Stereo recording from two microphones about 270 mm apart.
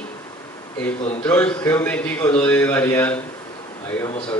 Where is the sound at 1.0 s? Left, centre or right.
Left.